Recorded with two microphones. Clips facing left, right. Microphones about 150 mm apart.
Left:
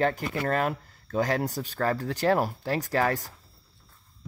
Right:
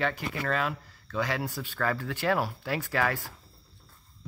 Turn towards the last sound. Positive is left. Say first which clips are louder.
# left 3 dB
turn(degrees=40)  # may be behind; listen again after turning